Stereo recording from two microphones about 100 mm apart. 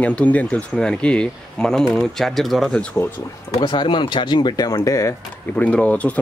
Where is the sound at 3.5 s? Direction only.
50° left (ahead or behind); by 5.1 s 35° left (ahead or behind).